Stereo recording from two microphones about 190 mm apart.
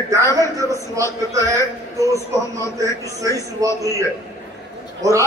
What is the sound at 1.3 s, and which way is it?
Speech, 15° right (ahead or behind).